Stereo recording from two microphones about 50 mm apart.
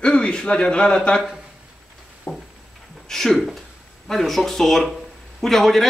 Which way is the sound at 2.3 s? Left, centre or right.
Left.